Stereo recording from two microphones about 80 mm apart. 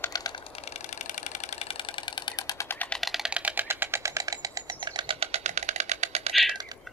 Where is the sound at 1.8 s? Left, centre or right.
Left.